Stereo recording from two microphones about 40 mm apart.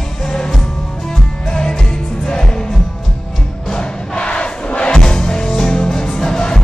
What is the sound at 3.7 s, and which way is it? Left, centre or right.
Music, left.